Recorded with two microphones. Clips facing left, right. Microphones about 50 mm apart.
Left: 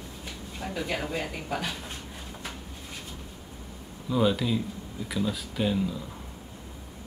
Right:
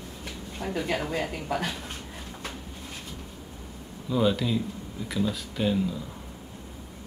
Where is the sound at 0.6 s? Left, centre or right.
Centre.